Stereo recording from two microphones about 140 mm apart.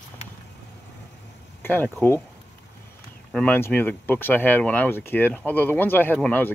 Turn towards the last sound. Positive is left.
turn(degrees=10)  # may be behind; listen again after turning